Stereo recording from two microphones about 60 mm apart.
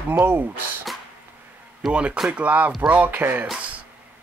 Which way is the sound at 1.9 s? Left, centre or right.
Centre.